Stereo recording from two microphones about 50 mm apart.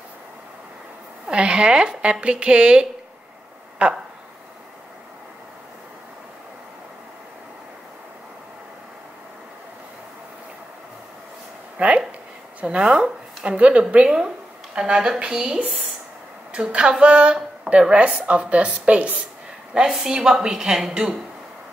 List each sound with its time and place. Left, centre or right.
1.2 s speech: right
11.8 s a woman's voice: right
19.7 s a woman's voice: centre